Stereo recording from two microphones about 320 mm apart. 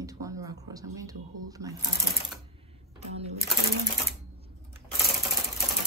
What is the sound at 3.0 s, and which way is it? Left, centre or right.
Speech, centre.